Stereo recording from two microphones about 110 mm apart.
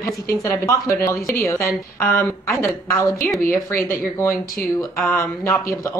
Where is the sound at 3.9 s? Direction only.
25° left (ahead or behind).